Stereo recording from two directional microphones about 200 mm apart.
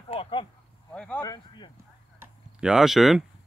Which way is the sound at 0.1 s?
25° left (ahead or behind).